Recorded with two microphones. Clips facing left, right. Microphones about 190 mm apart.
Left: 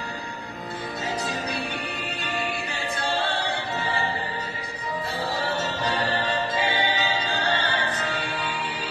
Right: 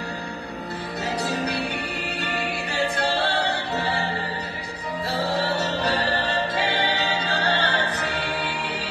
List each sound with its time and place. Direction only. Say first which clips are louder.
2.2 s choir: even; 70° right (ahead or behind)
5.6 s music: right 2 dB; 70° right (ahead or behind)